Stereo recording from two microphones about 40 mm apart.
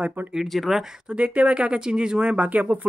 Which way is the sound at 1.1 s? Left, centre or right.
Right.